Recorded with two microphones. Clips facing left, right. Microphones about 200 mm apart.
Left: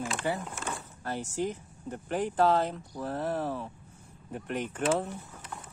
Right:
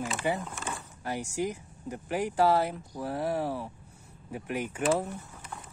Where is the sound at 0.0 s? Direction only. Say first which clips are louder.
Right 1 dB; 5° right (ahead or behind).